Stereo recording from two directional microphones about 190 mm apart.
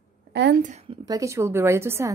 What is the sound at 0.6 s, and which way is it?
Speech, 40° right (ahead or behind).